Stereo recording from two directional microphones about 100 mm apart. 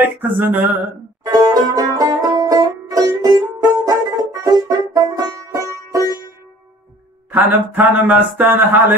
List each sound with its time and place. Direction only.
0.2 s mantra: 20° right (ahead or behind)
1.2 s banjo: 40° right (ahead or behind)
7.2 s mantra: 20° right (ahead or behind)